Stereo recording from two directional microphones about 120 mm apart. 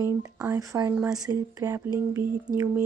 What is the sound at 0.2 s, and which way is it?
Speech, 25° right (ahead or behind).